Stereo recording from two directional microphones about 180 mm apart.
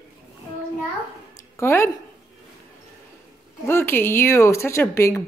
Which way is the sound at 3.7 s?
15° left (ahead or behind).